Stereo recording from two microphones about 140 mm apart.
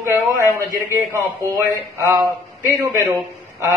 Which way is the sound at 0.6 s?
20° right (ahead or behind).